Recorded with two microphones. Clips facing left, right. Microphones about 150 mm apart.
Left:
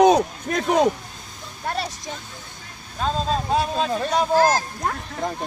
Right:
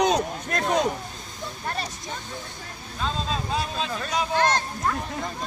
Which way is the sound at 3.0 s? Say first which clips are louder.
Left 5 dB; 45° left (ahead or behind).